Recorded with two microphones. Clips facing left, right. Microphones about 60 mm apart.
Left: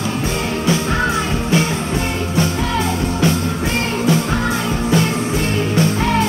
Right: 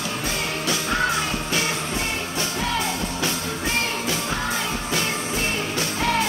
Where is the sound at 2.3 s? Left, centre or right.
Left.